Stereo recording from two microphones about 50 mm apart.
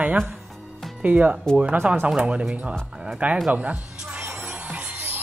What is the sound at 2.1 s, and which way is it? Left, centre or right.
Speech, right.